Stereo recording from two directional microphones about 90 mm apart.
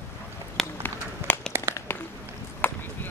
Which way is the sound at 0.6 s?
5° left (ahead or behind).